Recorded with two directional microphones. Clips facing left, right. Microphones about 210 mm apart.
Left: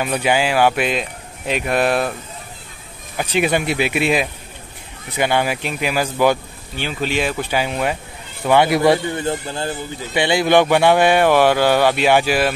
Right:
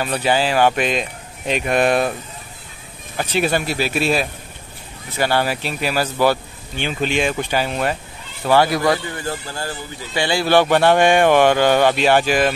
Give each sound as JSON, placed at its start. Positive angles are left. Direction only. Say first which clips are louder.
{"t": 0.0, "sound": "a man's voice", "louder": "left 1 dB", "side_deg": 10}
{"t": 3.2, "sound": "a man's voice", "louder": "left 1 dB", "side_deg": 15}
{"t": 5.1, "sound": "a man's voice", "louder": "left 1 dB", "side_deg": 15}
{"t": 8.5, "sound": "a man's voice", "louder": "left 2 dB", "side_deg": 20}